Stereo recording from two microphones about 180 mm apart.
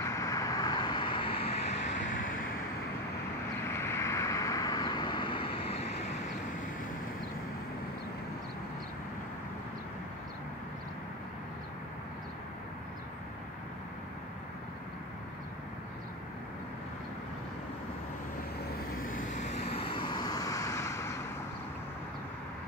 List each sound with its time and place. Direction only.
0.0 s vehicle: 20° left (ahead or behind); by 2.0 s 35° left (ahead or behind)
3.6 s vehicle: 15° left (ahead or behind)
19.3 s vehicle: 40° left (ahead or behind); by 21.3 s 15° left (ahead or behind)